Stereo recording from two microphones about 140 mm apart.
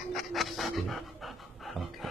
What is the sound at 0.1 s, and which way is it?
Dog, centre (ahead or behind).